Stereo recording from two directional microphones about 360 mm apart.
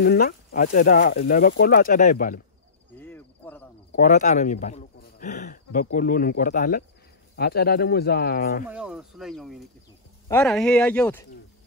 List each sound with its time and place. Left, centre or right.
0.0 s speech: left
3.0 s a sound: centre
3.9 s speech: left
8.6 s speech: centre